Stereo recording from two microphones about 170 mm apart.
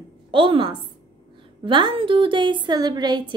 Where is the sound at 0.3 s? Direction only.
30° right (ahead or behind).